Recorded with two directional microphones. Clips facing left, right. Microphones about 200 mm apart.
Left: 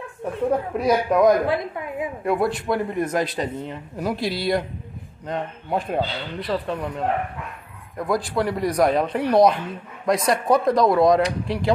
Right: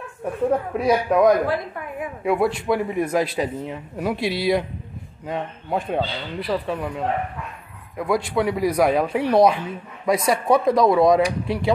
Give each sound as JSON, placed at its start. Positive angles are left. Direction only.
{"t": 0.7, "sound": "speech", "side_deg": 0}
{"t": 1.5, "sound": "a woman's voice", "side_deg": 20}
{"t": 2.2, "sound": "speech", "side_deg": 0}